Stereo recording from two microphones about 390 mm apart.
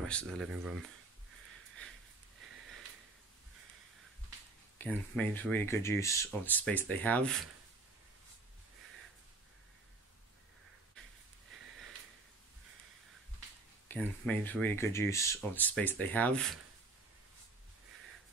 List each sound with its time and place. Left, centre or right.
0.0 s speech: centre
4.7 s speech: centre
13.8 s speech: centre